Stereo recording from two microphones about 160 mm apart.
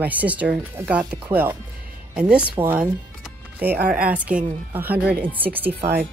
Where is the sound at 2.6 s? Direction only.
10° right (ahead or behind).